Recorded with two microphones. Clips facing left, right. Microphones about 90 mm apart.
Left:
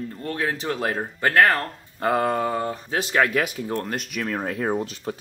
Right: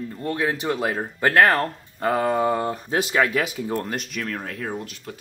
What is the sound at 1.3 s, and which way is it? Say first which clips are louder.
Speech: right 1 dB; 15° right (ahead or behind).